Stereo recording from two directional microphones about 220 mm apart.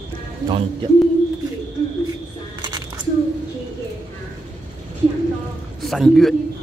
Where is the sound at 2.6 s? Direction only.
20° right (ahead or behind).